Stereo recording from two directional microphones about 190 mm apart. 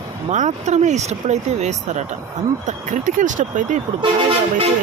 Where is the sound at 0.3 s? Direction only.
35° right (ahead or behind).